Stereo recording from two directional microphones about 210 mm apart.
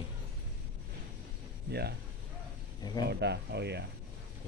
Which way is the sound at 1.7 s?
50° right (ahead or behind).